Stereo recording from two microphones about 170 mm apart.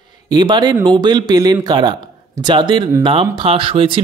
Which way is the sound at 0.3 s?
25° right (ahead or behind).